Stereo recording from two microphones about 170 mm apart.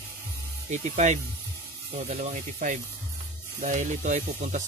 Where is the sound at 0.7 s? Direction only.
45° right (ahead or behind).